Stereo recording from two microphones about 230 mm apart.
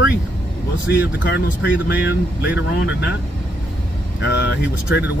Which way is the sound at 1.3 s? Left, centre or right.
Left.